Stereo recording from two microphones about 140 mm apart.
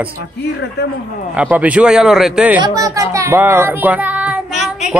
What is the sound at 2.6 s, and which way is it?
A man's voice, 25° right (ahead or behind).